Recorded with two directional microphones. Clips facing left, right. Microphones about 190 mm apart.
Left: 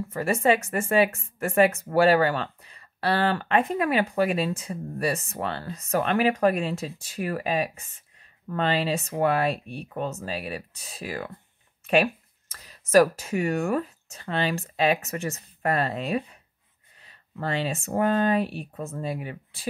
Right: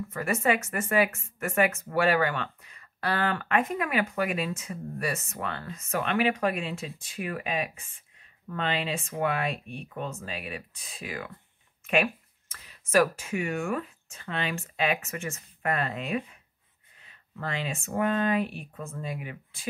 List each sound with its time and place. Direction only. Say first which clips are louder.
0.1 s speech: left 4 dB; 30° left (ahead or behind)